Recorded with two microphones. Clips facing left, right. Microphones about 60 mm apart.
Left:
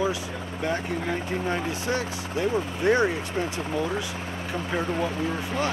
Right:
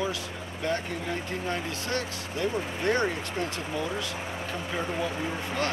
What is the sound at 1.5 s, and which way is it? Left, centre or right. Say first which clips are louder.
Speech: left 3 dB; centre.